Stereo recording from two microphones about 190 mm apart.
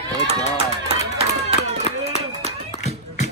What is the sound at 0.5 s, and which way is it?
Run, 30° right (ahead or behind).